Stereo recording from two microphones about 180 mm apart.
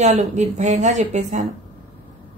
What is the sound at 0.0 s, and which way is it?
A woman's voice, 40° right (ahead or behind).